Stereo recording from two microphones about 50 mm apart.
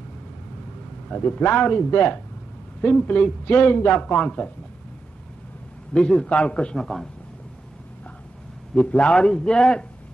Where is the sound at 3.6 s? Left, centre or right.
Left.